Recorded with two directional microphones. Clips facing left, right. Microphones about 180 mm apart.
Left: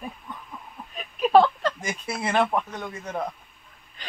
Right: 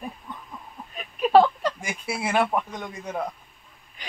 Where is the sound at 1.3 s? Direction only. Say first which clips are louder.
Right 1 dB; 10° right (ahead or behind).